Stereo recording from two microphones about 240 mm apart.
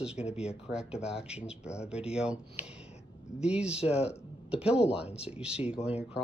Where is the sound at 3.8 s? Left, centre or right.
Left.